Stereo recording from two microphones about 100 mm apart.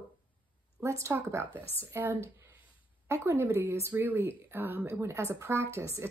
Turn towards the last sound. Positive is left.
turn(degrees=-30)  # may be behind; listen again after turning